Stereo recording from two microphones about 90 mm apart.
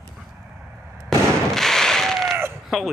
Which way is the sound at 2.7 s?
5° right (ahead or behind).